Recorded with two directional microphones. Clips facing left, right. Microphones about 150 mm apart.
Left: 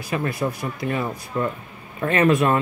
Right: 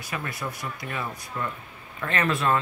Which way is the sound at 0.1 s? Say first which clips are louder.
Left 9 dB; 25° left (ahead or behind).